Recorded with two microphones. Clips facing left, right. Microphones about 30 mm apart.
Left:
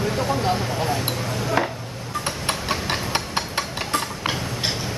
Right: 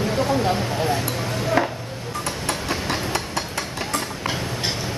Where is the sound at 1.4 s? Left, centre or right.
Centre.